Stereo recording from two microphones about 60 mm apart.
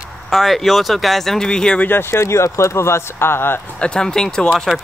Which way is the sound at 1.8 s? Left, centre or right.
Left.